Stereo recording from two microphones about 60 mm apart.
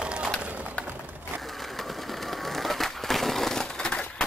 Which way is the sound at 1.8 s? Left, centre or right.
Centre.